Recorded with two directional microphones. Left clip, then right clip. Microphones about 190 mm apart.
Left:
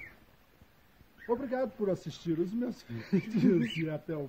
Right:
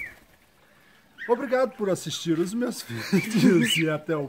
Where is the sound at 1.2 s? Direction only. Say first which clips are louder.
Right 9 dB; 5° right (ahead or behind).